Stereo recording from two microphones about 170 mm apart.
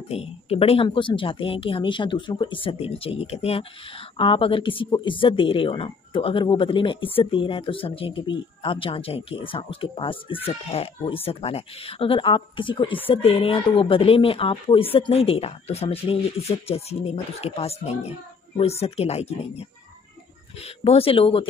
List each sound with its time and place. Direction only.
0.1 s speech: 35° left (ahead or behind)
20.6 s speech: 35° left (ahead or behind)